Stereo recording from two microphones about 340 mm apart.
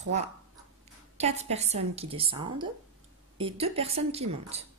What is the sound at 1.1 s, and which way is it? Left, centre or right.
A woman's voice, centre.